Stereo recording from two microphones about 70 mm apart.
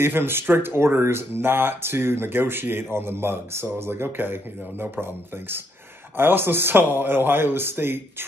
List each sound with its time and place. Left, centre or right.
0.0 s speech: right